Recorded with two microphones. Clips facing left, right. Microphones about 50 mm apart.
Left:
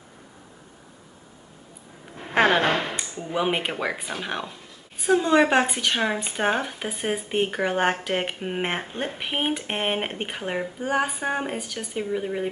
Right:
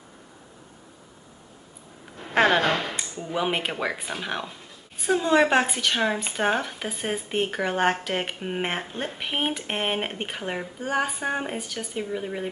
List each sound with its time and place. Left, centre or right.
2.3 s speech: centre
2.6 s speech: left
3.0 s speech: centre